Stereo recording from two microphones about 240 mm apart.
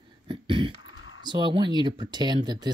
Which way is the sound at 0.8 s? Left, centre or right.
Left.